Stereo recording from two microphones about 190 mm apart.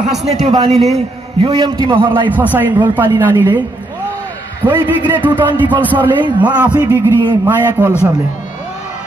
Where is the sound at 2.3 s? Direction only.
10° right (ahead or behind).